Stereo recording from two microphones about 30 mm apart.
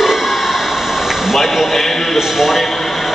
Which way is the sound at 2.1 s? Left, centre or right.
Centre.